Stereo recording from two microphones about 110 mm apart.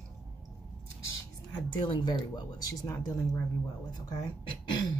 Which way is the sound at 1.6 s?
50° left (ahead or behind).